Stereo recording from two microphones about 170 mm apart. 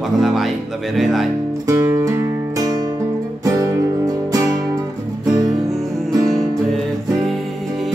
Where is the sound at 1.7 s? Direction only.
15° right (ahead or behind).